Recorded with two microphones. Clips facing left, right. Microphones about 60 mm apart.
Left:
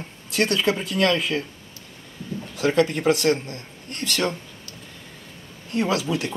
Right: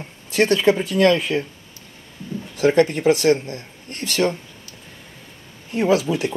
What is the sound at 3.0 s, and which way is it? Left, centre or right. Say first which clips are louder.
Speech: right 4 dB; centre.